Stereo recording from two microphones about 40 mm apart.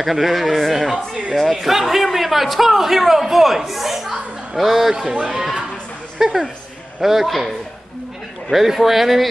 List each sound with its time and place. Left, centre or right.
0.0 s a man's voice: centre
5.0 s speech: right
5.3 s a woman's voice: centre